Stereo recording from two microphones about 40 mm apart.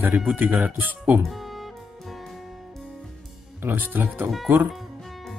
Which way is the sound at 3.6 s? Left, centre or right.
Right.